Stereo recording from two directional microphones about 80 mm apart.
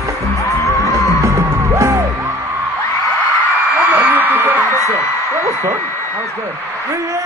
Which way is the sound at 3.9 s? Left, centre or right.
Centre.